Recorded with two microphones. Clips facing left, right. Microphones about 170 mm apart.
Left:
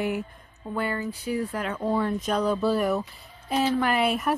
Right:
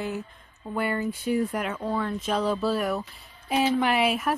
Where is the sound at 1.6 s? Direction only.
5° right (ahead or behind).